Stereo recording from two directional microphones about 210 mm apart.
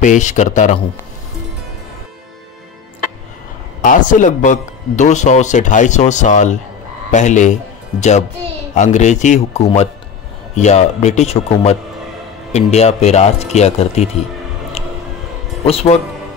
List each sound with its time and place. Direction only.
0.0 s a man's voice: 35° left (ahead or behind)
3.8 s a man's voice: 40° left (ahead or behind)
8.7 s a man's voice: 35° left (ahead or behind)
14.8 s music: 30° left (ahead or behind)
15.6 s speech: 30° left (ahead or behind)